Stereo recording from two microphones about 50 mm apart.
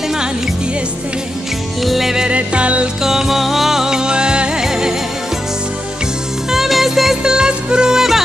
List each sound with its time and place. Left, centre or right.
1.8 s music: centre
2.2 s music: right
3.0 s music: centre
6.5 s music: centre
7.3 s music: centre